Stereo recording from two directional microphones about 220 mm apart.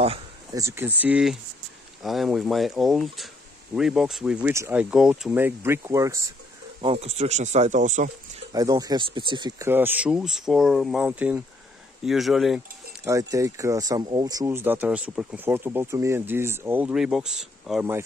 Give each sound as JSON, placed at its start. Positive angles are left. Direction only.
{"t": 0.6, "sound": "speech", "side_deg": -10}
{"t": 6.8, "sound": "speech", "side_deg": -25}
{"t": 8.5, "sound": "speech", "side_deg": -15}
{"t": 13.0, "sound": "speech", "side_deg": -15}